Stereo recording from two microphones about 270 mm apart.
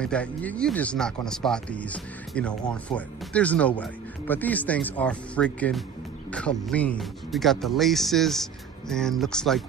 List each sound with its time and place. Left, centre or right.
0.0 s speech: centre